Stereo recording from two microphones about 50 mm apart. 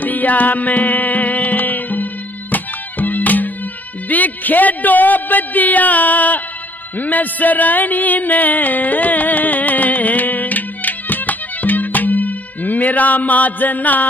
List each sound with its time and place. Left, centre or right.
0.0 s music: left
4.1 s a man's voice: left
7.0 s music: left